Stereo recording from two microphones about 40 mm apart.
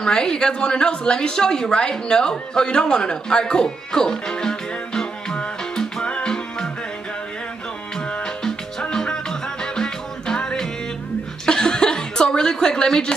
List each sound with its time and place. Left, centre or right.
0.0 s a woman's voice: centre
5.6 s music: centre
7.9 s music: left
11.4 s chuckle: centre